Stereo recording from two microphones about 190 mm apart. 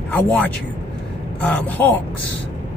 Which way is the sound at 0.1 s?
10° left (ahead or behind).